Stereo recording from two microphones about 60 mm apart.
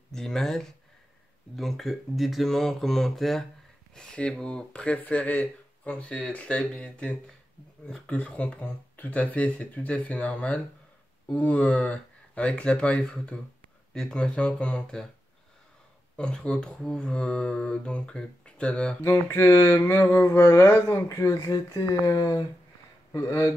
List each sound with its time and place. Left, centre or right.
0.1 s speech: centre
3.9 s speech: centre
16.2 s speech: centre
19.0 s a sound: left
20.2 s speech: left
23.1 s speech: left